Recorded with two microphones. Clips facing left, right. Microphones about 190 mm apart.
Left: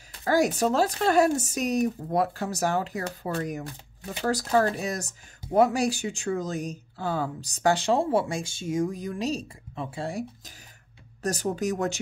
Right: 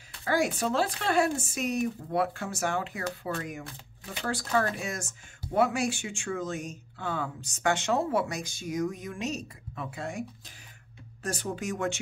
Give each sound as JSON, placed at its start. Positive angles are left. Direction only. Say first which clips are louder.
{"t": 0.1, "sound": "speech", "louder": "left 4 dB", "side_deg": 40}